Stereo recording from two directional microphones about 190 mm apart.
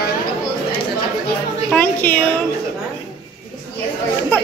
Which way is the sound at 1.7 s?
10° left (ahead or behind).